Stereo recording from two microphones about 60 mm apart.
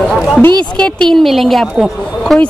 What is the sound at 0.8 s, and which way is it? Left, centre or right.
Speech, centre.